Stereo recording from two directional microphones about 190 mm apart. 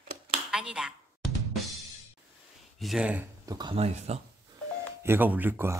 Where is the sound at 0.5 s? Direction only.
5° right (ahead or behind).